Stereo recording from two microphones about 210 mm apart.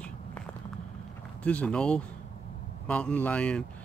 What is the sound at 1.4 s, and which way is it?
Speech, 5° left (ahead or behind).